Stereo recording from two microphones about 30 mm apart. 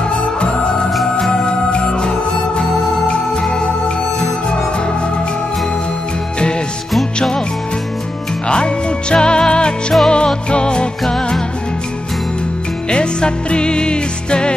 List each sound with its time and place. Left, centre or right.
0.4 s music: left
8.5 s music: left
12.9 s music: left